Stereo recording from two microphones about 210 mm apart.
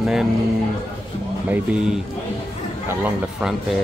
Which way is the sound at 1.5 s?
5° right (ahead or behind).